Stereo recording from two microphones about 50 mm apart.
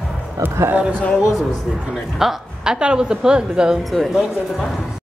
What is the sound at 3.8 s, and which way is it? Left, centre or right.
Speech, centre.